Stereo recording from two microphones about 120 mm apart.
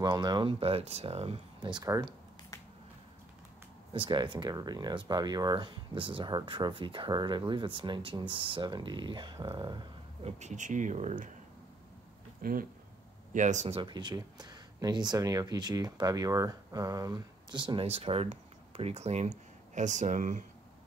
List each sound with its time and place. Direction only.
0.0 s speech: 35° right (ahead or behind)
3.9 s speech: 45° right (ahead or behind)
10.2 s speech: 80° right
13.3 s speech: 90° right
13.7 s speech: 40° right (ahead or behind); by 20.4 s 90° right